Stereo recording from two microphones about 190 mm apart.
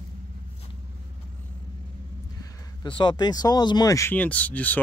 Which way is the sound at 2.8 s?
25° left (ahead or behind).